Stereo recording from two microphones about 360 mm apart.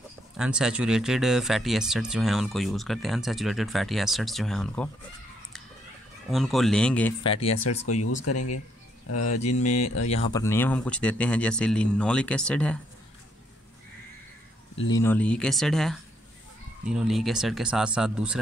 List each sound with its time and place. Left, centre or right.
0.4 s speech: centre
6.3 s speech: centre
7.9 s speech: left
10.0 s speech: centre
10.4 s speech: centre
14.9 s speech: centre